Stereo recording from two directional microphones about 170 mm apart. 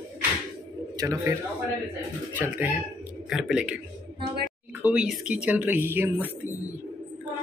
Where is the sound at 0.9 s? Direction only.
15° right (ahead or behind).